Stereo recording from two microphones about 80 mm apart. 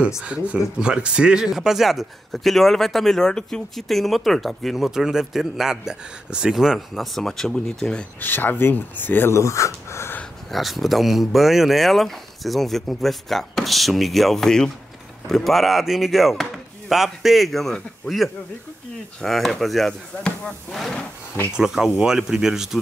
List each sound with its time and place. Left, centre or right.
0.2 s speech: centre
8.2 s speech: left
9.3 s speech: left
10.5 s speech: centre